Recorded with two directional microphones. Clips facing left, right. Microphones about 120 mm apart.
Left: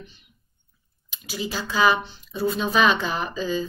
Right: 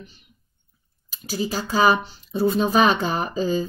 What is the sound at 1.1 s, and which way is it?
Speech, 40° right (ahead or behind).